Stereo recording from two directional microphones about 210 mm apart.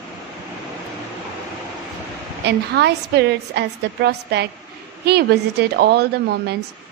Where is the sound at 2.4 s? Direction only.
50° right (ahead or behind).